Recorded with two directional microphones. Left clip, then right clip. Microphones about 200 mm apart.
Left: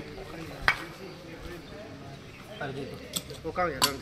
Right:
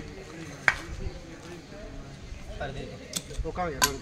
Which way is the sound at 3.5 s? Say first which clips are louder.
Left 3 dB; 10° right (ahead or behind).